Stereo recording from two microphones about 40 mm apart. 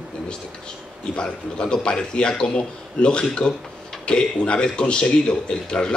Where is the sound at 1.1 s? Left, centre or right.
Left.